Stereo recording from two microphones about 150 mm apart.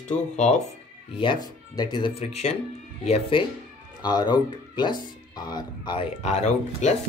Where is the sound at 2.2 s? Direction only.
45° left (ahead or behind).